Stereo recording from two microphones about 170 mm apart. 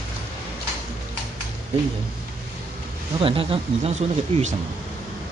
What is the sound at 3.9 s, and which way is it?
Speech, 45° right (ahead or behind).